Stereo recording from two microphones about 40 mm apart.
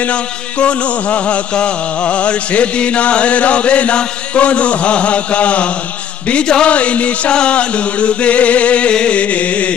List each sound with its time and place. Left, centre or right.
0.0 s music: left
6.4 s speech: centre
6.7 s music: left